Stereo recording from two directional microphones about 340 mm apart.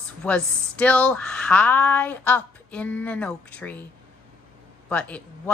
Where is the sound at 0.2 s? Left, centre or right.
Centre.